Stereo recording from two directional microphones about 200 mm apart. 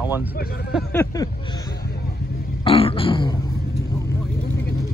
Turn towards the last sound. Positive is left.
turn(degrees=25)  # may be behind; listen again after turning